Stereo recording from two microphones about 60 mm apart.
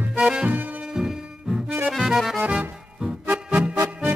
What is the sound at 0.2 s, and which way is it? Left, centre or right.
Music, centre.